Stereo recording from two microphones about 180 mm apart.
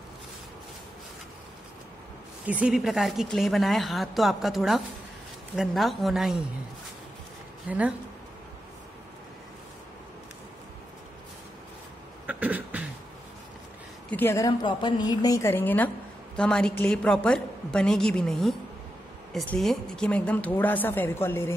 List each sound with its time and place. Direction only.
2.4 s a woman's voice: 5° right (ahead or behind)
7.7 s speech: 5° right (ahead or behind)
12.3 s beatboxing: 10° right (ahead or behind)
14.1 s a woman's voice: 15° left (ahead or behind)